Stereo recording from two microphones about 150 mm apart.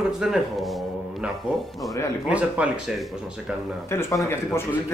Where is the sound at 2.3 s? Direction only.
5° right (ahead or behind).